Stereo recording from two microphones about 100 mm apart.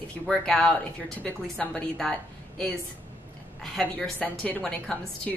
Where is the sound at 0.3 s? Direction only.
5° left (ahead or behind).